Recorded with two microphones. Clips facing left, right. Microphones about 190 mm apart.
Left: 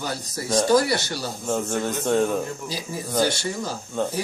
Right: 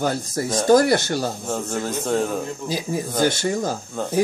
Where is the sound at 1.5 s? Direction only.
Centre (ahead or behind).